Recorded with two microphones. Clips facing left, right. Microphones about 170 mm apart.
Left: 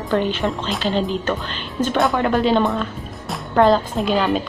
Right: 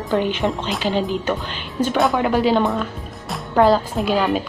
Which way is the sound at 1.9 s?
Centre (ahead or behind).